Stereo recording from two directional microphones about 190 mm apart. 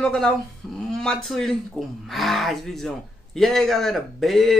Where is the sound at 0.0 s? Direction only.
5° left (ahead or behind).